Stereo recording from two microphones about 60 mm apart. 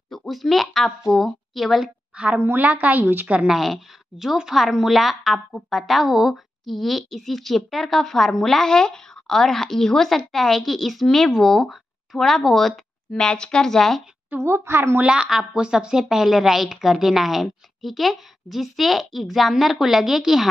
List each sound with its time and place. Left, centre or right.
0.1 s speech: centre
2.3 s a woman's voice: right
3.4 s a woman's voice: centre
14.4 s a woman's voice: right
15.2 s a woman's voice: centre